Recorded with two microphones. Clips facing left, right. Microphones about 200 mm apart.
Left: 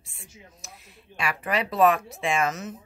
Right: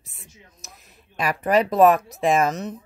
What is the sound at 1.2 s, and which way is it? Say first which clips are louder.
Speech: right 7 dB; 40° right (ahead or behind).